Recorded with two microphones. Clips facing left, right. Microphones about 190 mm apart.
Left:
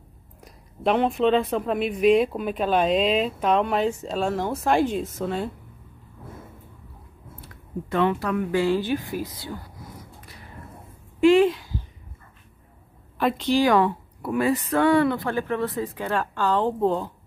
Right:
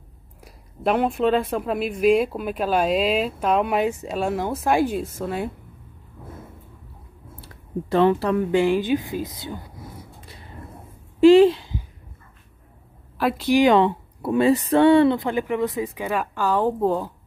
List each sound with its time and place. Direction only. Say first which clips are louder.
0.4 s a woman's voice: even; 5° right (ahead or behind)
7.4 s speech: right 4 dB; 35° right (ahead or behind)
11.1 s a sound: right 5 dB; 30° right (ahead or behind)
13.2 s speech: right 3 dB; 5° right (ahead or behind)